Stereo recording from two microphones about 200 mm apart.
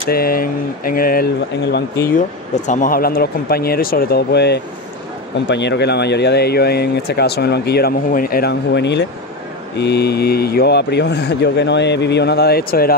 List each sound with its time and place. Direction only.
0.1 s speech: 45° left (ahead or behind)